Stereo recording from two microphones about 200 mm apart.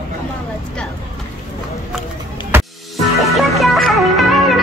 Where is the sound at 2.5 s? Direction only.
10° right (ahead or behind).